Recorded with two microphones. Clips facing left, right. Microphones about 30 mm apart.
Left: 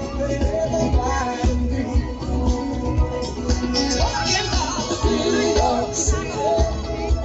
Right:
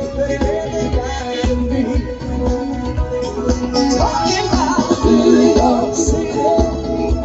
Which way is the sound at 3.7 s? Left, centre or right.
Centre.